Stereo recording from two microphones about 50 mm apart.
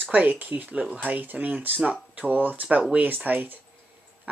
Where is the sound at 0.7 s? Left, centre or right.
Right.